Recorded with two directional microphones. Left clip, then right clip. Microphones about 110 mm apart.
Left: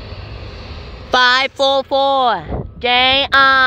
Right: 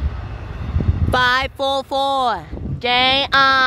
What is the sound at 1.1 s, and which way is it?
Speech, 10° left (ahead or behind).